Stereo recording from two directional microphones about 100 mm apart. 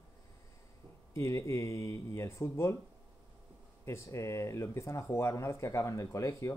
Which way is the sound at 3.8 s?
30° left (ahead or behind).